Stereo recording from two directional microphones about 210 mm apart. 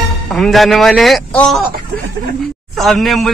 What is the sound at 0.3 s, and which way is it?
A man's voice, centre (ahead or behind).